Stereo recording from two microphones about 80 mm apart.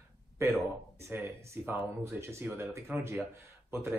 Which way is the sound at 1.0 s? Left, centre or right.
Right.